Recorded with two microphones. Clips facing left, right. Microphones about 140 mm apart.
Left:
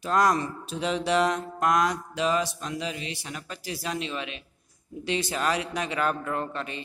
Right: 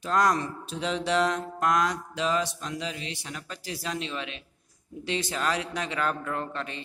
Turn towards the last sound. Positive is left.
turn(degrees=10)  # may be behind; listen again after turning